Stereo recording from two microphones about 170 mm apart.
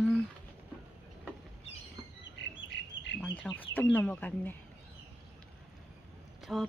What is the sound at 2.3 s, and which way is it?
Bird, 90° left.